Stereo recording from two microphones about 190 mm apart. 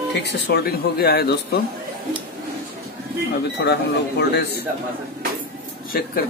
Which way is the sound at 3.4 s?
60° left (ahead or behind).